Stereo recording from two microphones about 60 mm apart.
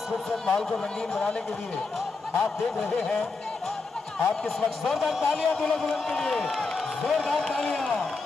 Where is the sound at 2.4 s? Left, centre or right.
Centre.